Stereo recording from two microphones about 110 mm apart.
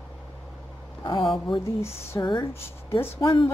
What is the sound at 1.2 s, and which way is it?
Speech, centre (ahead or behind).